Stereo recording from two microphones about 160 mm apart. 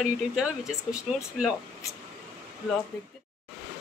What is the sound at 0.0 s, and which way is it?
Speech, 5° right (ahead or behind).